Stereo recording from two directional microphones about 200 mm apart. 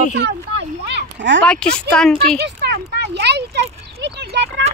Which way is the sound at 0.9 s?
60° right (ahead or behind).